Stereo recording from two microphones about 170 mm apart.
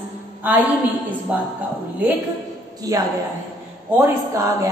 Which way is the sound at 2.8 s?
20° right (ahead or behind).